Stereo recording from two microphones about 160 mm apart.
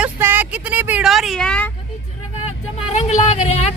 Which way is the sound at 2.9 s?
45° left (ahead or behind).